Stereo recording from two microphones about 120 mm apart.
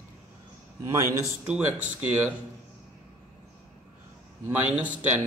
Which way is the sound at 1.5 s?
15° right (ahead or behind).